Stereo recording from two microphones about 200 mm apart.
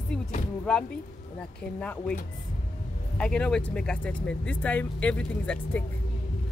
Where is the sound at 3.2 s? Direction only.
5° left (ahead or behind).